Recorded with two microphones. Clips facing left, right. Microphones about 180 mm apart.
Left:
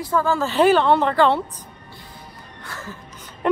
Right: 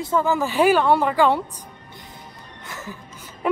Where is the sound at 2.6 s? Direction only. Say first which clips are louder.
Even; 20° right (ahead or behind).